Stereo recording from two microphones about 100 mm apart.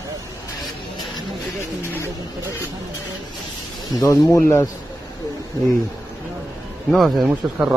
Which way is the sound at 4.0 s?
30° left (ahead or behind).